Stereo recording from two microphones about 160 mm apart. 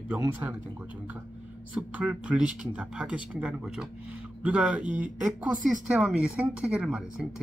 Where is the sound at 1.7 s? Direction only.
10° right (ahead or behind).